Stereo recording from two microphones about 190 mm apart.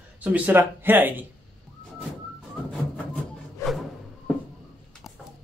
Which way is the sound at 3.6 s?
15° left (ahead or behind).